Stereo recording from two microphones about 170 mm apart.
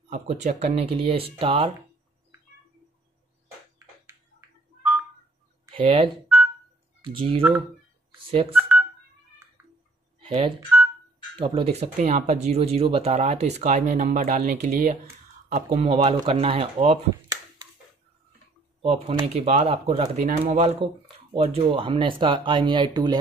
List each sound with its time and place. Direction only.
0.1 s speech: 45° right (ahead or behind)
4.0 s a sound: 10° right (ahead or behind)
5.7 s speech: 35° right (ahead or behind)
10.2 s speech: 30° right (ahead or behind)
18.8 s speech: 35° right (ahead or behind)